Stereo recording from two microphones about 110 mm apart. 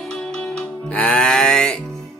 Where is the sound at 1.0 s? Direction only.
10° left (ahead or behind).